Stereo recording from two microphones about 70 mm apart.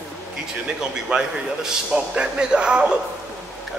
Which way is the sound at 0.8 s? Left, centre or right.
Centre.